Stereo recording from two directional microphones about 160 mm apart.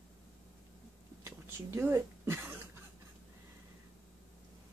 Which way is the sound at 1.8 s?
15° right (ahead or behind).